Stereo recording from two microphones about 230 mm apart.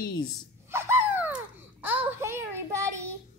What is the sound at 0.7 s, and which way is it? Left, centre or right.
Babbling, centre.